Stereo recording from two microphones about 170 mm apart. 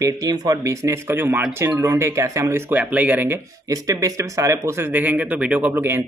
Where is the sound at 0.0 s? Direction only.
20° right (ahead or behind).